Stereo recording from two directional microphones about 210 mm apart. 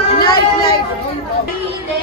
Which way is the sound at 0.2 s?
45° left (ahead or behind).